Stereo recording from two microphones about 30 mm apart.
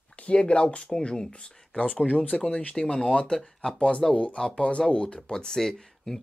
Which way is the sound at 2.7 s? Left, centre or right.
Centre.